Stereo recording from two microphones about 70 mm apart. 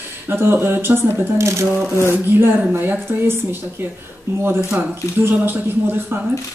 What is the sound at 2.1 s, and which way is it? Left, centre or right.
Speech, right.